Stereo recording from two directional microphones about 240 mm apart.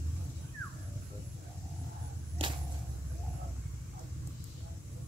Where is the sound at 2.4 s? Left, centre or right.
Right.